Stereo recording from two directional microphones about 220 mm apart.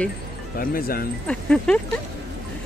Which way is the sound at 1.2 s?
5° left (ahead or behind).